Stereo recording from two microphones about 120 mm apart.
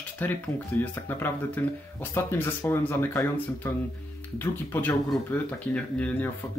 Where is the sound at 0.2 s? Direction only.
15° left (ahead or behind).